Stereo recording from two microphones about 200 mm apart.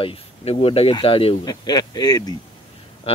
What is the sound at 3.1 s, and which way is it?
Speech, 30° left (ahead or behind).